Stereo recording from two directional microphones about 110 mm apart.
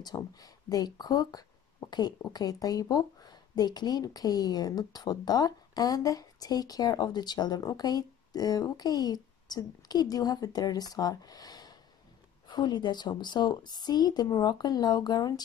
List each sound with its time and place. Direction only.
0.0 s speech: 35° left (ahead or behind)